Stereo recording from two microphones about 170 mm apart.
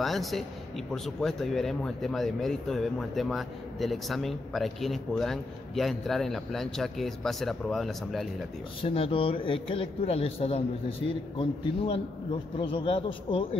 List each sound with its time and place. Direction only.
0.0 s speech: centre (ahead or behind)
8.8 s speech: 35° left (ahead or behind)